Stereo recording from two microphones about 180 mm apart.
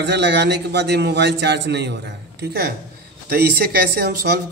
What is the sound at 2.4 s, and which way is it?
Speech, 60° right (ahead or behind).